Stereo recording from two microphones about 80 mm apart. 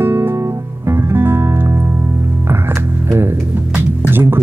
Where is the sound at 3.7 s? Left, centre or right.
Right.